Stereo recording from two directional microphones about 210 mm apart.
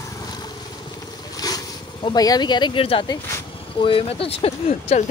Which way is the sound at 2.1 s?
20° left (ahead or behind).